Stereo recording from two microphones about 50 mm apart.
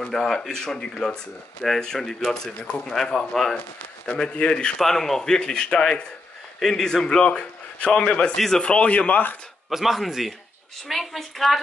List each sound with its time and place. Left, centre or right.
0.0 s speech: centre
4.8 s speech: centre; by 9.4 s left
9.7 s a woman's voice: centre